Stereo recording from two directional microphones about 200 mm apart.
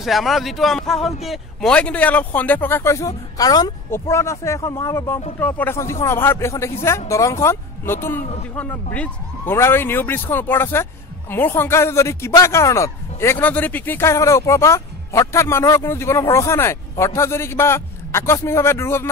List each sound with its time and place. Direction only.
0.0 s a man's voice: centre (ahead or behind)